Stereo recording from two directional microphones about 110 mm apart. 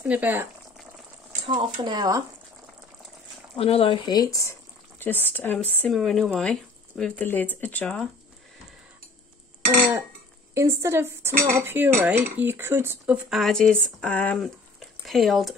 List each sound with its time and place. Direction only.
0.0 s speech: 15° right (ahead or behind)
1.5 s speech: 45° right (ahead or behind)
3.5 s speech: 60° left (ahead or behind)
4.1 s speech: 35° left (ahead or behind)
4.9 s speech: 20° left (ahead or behind)
5.9 s speech: centre (ahead or behind)
10.5 s cutlery: 25° right (ahead or behind)
13.3 s speech: 5° left (ahead or behind)
14.4 s a sound: centre (ahead or behind)